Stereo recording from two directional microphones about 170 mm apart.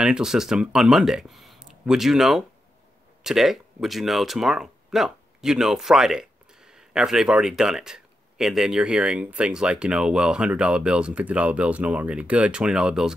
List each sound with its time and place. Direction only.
0.0 s speech: 5° right (ahead or behind)